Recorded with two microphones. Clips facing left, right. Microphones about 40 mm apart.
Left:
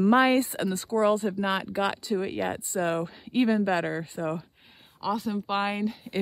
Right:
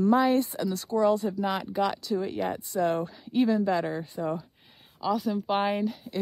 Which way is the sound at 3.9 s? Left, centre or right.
Centre.